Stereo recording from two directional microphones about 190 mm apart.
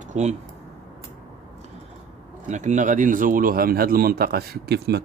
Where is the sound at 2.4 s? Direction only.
40° right (ahead or behind).